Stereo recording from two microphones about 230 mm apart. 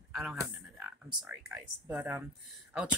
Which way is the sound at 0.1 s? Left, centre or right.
Centre.